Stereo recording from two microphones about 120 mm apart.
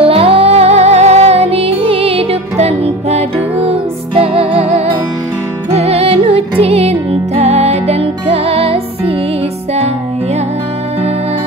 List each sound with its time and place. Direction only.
0.0 s music: 50° right (ahead or behind)